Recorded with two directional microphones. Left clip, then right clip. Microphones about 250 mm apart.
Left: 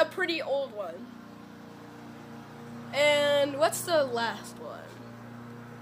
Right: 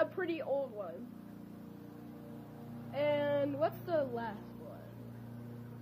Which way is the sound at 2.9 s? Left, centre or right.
Centre.